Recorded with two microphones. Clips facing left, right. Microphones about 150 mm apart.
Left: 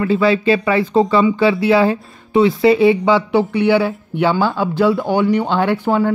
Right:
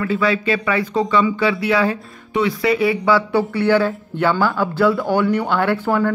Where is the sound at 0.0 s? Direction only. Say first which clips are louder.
Left 4 dB; 30° left (ahead or behind).